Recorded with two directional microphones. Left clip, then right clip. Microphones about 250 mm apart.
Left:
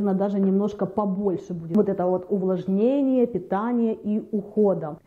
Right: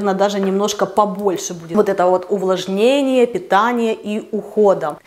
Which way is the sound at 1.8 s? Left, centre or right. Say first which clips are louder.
Right 9 dB; centre.